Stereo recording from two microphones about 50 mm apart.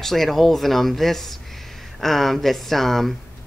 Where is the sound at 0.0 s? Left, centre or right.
Centre.